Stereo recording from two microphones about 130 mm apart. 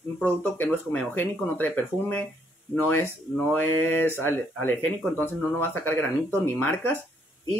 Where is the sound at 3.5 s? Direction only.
15° left (ahead or behind).